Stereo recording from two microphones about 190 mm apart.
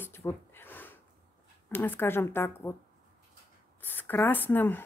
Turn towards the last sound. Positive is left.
turn(degrees=10)  # may be behind; listen again after turning